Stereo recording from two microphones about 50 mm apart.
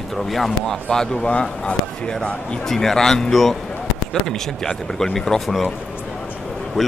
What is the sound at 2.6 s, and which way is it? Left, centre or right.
Speech, centre.